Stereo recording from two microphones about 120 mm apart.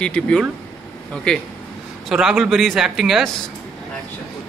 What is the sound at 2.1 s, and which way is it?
A man's voice, 5° right (ahead or behind).